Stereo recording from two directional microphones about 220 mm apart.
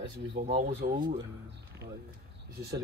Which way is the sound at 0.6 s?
40° right (ahead or behind).